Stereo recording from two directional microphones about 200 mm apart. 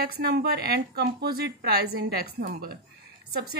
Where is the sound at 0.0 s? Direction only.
50° right (ahead or behind).